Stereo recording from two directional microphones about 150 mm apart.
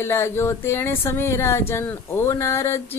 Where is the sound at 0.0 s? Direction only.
15° left (ahead or behind).